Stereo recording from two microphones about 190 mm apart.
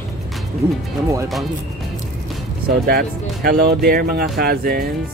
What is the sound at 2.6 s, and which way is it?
Speech, 55° right (ahead or behind).